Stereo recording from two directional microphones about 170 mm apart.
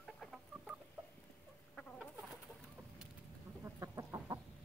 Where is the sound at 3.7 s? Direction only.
20° right (ahead or behind).